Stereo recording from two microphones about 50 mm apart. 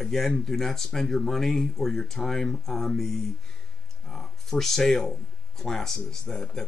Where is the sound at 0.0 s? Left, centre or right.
Centre.